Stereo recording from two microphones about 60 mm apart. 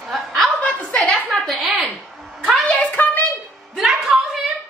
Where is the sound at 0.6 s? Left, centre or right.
Left.